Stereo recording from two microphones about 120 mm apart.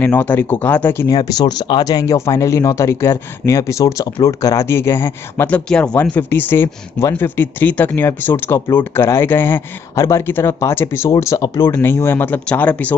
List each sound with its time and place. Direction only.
0.0 s speech: 15° left (ahead or behind)
1.0 s speech: 30° left (ahead or behind)
5.7 s speech: 10° left (ahead or behind)